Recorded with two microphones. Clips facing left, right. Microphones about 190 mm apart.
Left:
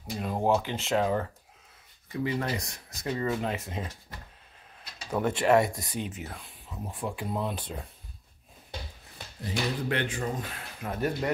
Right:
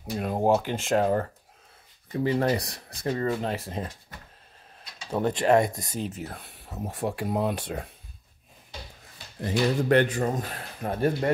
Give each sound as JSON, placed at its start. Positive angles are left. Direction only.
{"t": 0.5, "sound": "a man's voice", "side_deg": -50}
{"t": 5.1, "sound": "a man's voice", "side_deg": -40}
{"t": 6.3, "sound": "a sound", "side_deg": -70}
{"t": 6.9, "sound": "speech", "side_deg": -75}
{"t": 9.4, "sound": "a man's voice", "side_deg": -45}